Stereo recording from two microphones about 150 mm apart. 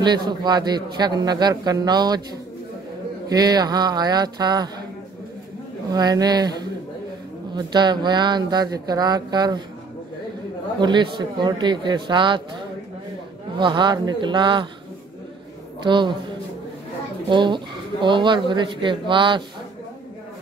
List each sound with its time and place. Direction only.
0.0 s a man's voice: 30° right (ahead or behind)
3.3 s a man's voice: 25° right (ahead or behind)
5.9 s a man's voice: 25° right (ahead or behind)
10.8 s speech: 30° right (ahead or behind)
13.6 s speech: 30° right (ahead or behind)
15.8 s speech: 30° right (ahead or behind)
17.3 s speech: 30° right (ahead or behind)